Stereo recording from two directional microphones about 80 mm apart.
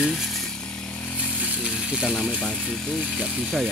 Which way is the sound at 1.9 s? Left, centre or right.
Centre.